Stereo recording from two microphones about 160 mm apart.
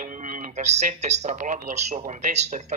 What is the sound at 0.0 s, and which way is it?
A man's voice, 50° right (ahead or behind).